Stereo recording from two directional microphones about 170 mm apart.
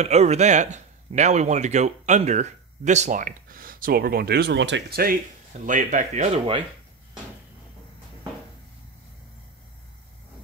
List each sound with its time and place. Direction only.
0.0 s speech: 40° right (ahead or behind); by 5.1 s 65° right (ahead or behind)
5.7 s speech: 50° right (ahead or behind)